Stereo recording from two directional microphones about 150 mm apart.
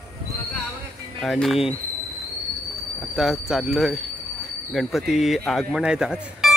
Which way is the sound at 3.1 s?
Centre (ahead or behind).